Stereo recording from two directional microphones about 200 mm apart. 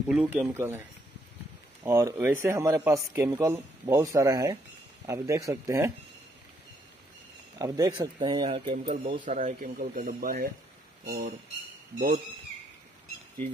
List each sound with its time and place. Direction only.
0.1 s a man's voice: 5° right (ahead or behind)
7.5 s speech: 15° right (ahead or behind)
8.8 s speech: 40° right (ahead or behind)